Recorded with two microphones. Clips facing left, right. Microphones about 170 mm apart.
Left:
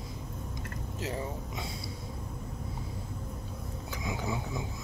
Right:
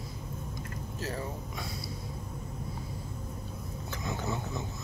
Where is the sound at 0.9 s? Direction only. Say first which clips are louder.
Left 1 dB; 20° left (ahead or behind).